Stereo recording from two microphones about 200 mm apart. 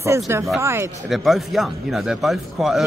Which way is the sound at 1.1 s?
Centre (ahead or behind).